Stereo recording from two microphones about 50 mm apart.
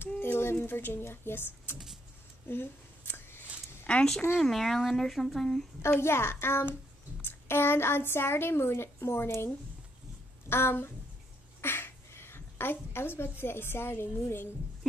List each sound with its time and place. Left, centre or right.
0.2 s a sound: left
3.9 s speech: centre
4.4 s speech: centre
5.9 s a woman's voice: left
10.5 s a woman's voice: left